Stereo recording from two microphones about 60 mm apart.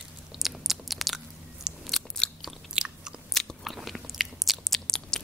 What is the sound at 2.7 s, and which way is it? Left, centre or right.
Biting, centre.